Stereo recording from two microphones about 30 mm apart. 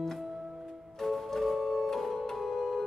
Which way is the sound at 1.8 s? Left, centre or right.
Centre.